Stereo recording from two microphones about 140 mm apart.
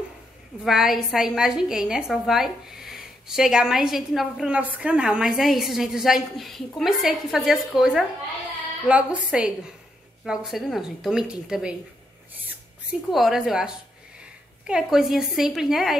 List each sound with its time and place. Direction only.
0.7 s a woman's voice: 5° right (ahead or behind)
13.1 s a woman's voice: centre (ahead or behind)